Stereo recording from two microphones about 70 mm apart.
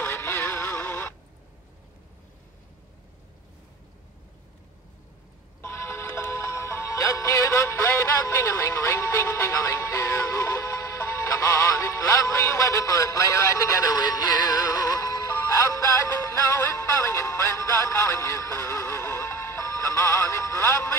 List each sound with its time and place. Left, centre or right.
0.0 s music: left
5.6 s music: left
13.8 s music: left